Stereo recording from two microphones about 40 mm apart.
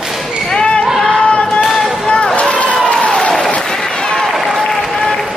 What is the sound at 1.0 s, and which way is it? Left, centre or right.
Music, left.